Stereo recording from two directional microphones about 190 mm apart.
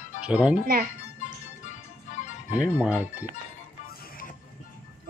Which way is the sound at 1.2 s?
40° left (ahead or behind).